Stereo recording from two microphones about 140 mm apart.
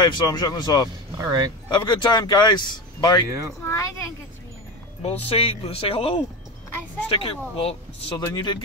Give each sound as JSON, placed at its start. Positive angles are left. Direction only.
{"t": 0.0, "sound": "speech", "side_deg": 35}
{"t": 1.1, "sound": "speech", "side_deg": -25}
{"t": 1.7, "sound": "speech", "side_deg": 30}
{"t": 3.3, "sound": "speech", "side_deg": -20}
{"t": 3.6, "sound": "speech", "side_deg": 20}
{"t": 5.0, "sound": "speech", "side_deg": 45}
{"t": 8.4, "sound": "speech", "side_deg": 30}